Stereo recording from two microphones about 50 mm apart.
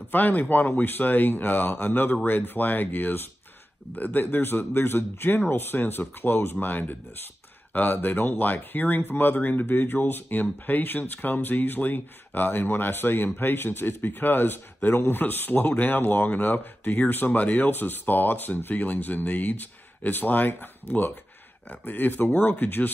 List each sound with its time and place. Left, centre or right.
0.1 s speech: left